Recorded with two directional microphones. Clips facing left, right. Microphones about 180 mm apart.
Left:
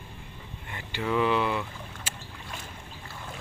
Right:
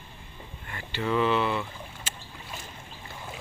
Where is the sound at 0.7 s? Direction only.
10° left (ahead or behind).